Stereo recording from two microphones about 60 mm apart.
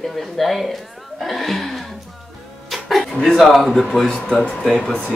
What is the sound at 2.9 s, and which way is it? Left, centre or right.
Speech, centre.